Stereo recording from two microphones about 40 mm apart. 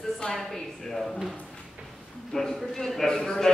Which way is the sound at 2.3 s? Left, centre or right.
Centre.